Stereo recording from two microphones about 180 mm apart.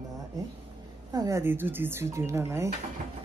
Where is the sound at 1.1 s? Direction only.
20° right (ahead or behind).